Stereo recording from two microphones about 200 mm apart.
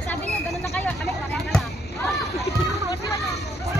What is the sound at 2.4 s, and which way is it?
Children playing, 15° left (ahead or behind).